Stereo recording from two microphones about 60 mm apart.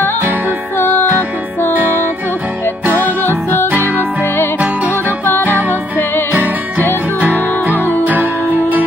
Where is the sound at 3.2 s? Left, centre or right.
Left.